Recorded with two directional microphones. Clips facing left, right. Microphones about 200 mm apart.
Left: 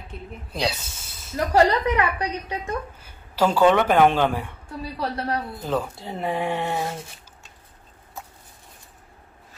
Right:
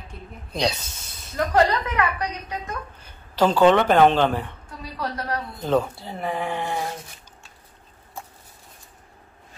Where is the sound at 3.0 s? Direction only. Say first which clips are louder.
Right 2 dB; 10° left (ahead or behind).